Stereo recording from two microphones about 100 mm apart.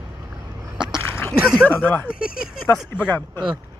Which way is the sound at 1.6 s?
15° left (ahead or behind).